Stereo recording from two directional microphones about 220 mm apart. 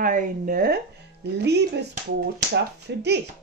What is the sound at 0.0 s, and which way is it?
Speech, 35° right (ahead or behind).